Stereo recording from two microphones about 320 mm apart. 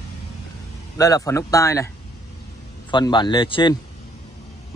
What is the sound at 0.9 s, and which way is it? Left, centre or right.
Speech, centre.